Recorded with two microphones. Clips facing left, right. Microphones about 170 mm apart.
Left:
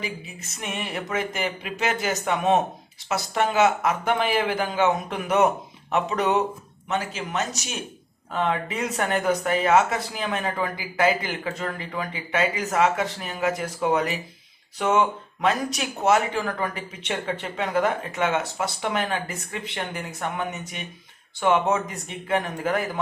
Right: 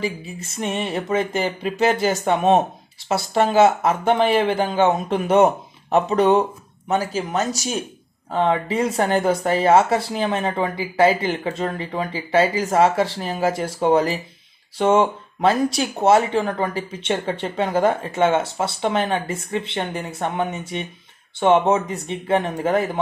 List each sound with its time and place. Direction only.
0.0 s speech: 30° right (ahead or behind)